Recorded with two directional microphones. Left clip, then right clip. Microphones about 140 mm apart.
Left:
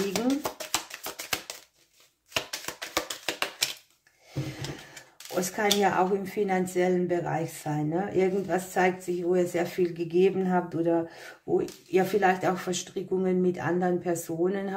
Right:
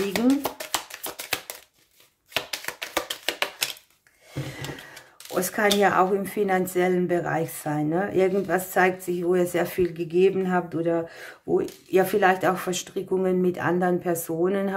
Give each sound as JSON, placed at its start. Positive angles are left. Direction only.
{"t": 0.1, "sound": "shuffling cards", "side_deg": -20}
{"t": 2.3, "sound": "a sound", "side_deg": -20}
{"t": 5.8, "sound": "speech", "side_deg": -40}
{"t": 9.9, "sound": "speech", "side_deg": -25}